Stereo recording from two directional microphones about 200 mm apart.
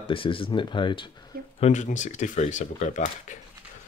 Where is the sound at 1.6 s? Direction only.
35° left (ahead or behind).